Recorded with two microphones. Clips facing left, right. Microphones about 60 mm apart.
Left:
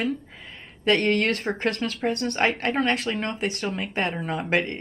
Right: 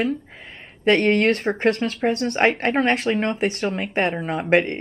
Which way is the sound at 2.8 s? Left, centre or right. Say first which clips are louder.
Right 5 dB; centre.